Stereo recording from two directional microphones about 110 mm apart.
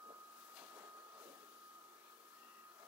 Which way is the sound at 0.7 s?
30° right (ahead or behind).